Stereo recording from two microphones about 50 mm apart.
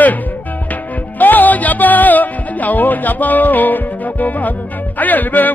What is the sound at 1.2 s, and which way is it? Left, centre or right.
Music, left.